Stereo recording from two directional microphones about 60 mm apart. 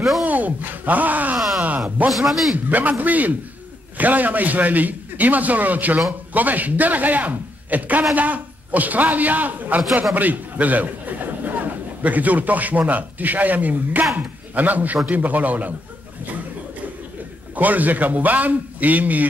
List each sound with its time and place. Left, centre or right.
0.2 s speech: right
2.0 s a man's voice: centre
2.5 s a man's voice: right
17.6 s a man's voice: right